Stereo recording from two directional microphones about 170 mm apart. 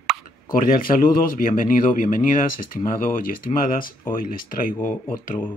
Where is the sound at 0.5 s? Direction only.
55° left (ahead or behind).